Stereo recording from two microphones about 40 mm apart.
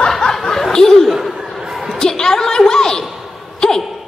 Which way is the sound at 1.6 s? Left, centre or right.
Centre.